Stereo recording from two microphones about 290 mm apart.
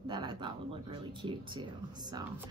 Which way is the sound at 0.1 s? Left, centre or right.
Centre.